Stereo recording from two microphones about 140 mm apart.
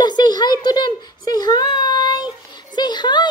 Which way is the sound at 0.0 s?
30° left (ahead or behind).